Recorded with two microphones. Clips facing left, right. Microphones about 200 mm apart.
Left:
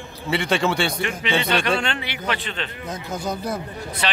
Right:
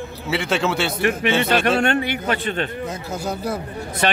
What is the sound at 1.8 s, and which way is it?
Speech, 50° right (ahead or behind).